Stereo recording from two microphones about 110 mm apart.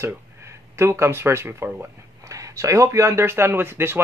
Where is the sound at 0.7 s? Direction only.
25° right (ahead or behind).